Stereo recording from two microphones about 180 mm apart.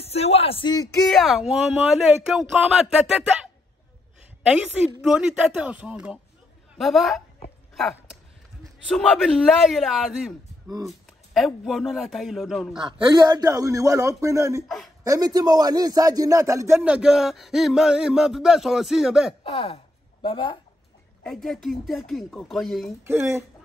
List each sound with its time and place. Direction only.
0.0 s speech: 35° left (ahead or behind)
1.0 s a man's voice: centre (ahead or behind)
8.8 s a man's voice: 5° left (ahead or behind)
11.3 s a man's voice: centre (ahead or behind)
12.7 s a man's voice: 25° right (ahead or behind); by 19.3 s centre (ahead or behind)
19.4 s a sound: 35° left (ahead or behind)
21.2 s a man's voice: centre (ahead or behind)
23.0 s speech: 15° right (ahead or behind)